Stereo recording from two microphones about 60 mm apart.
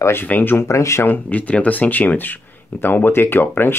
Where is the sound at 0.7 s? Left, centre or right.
Left.